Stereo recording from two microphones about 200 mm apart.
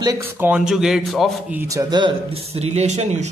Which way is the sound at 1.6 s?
15° right (ahead or behind).